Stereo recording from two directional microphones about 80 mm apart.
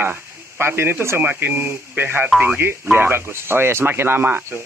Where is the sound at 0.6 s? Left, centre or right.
Right.